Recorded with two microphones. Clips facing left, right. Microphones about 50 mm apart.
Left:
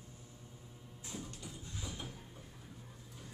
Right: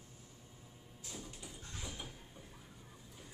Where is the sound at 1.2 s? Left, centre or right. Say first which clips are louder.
Left 2 dB; centre.